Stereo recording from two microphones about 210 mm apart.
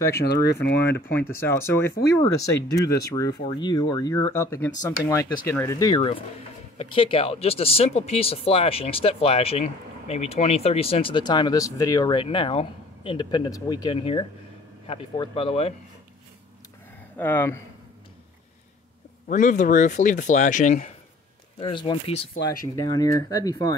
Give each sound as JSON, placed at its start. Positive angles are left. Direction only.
{"t": 0.2, "sound": "speech", "side_deg": 50}
{"t": 1.1, "sound": "speech", "side_deg": 10}
{"t": 17.2, "sound": "speech", "side_deg": 10}
{"t": 19.2, "sound": "speech", "side_deg": 35}
{"t": 21.5, "sound": "speech", "side_deg": 20}